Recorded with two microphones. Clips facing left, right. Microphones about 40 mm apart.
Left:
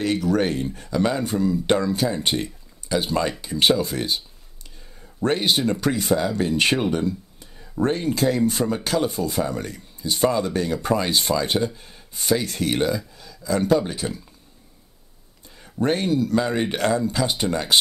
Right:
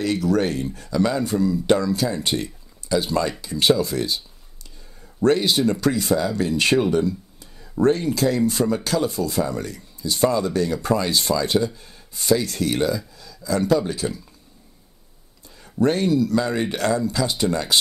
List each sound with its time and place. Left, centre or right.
0.0 s speech: left
5.2 s speech: left
15.6 s speech: left